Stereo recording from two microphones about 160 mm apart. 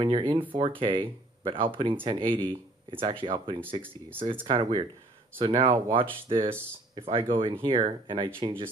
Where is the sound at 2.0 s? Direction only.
30° right (ahead or behind).